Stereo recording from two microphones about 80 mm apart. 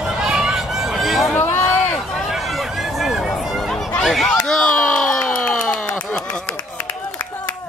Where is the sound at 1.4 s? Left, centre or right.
Left.